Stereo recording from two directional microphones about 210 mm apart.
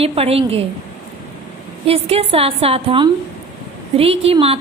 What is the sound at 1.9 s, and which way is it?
A woman's voice, 30° right (ahead or behind).